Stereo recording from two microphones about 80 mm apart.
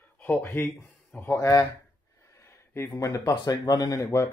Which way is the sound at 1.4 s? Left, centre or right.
Left.